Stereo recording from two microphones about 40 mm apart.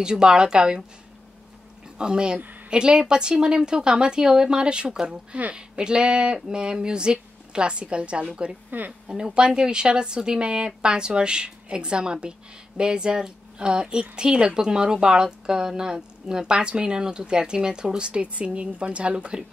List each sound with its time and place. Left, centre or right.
0.0 s speech: centre
2.0 s speech: right
8.6 s speech: right
9.0 s speech: right